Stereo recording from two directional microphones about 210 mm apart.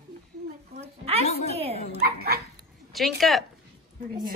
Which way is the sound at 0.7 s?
30° right (ahead or behind).